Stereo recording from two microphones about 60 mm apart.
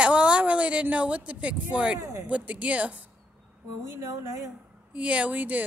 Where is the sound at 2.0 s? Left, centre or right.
Right.